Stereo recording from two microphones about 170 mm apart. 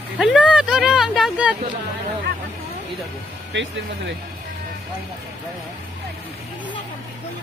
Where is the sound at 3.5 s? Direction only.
90° right.